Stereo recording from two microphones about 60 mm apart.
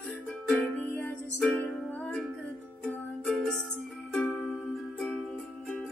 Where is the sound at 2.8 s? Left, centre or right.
Centre.